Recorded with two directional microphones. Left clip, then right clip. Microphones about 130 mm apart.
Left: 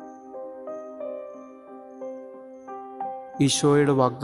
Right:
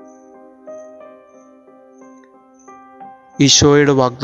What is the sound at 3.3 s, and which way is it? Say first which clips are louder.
Speech: right 10 dB; 35° right (ahead or behind).